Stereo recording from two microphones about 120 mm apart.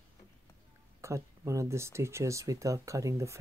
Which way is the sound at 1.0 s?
25° right (ahead or behind).